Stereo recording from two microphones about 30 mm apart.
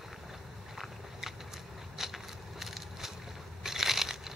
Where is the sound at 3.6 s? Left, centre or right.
Centre.